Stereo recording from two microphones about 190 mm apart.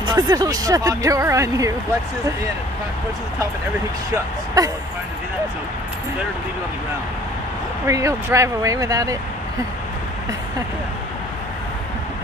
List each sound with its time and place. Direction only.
0.0 s speech: 20° right (ahead or behind)
4.6 s speech: 20° right (ahead or behind)
7.8 s speech: 15° right (ahead or behind)